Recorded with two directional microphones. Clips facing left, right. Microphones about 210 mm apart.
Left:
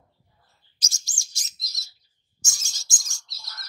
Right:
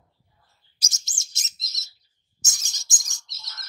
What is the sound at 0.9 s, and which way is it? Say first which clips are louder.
Chirp: right 1 dB; 20° right (ahead or behind).